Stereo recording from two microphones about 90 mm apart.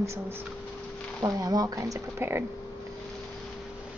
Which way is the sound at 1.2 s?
40° right (ahead or behind).